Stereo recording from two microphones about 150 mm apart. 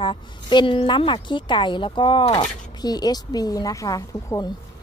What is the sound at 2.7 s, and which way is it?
A woman's voice, 25° left (ahead or behind).